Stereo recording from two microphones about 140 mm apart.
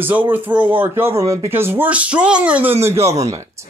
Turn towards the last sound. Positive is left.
turn(degrees=-20)  # may be behind; listen again after turning